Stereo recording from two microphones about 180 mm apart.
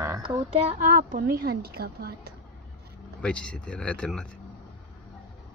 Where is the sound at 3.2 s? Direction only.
5° left (ahead or behind).